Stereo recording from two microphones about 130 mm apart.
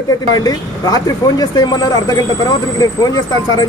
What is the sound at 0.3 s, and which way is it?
Speech, 30° left (ahead or behind).